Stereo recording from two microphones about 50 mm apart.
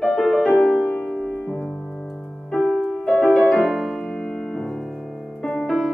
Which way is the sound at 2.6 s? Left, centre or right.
Centre.